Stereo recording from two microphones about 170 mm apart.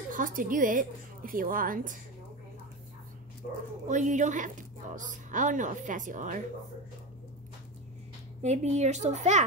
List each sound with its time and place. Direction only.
0.1 s a woman's voice: 55° right (ahead or behind)
3.9 s a woman's voice: 45° right (ahead or behind)
8.4 s a woman's voice: 40° right (ahead or behind)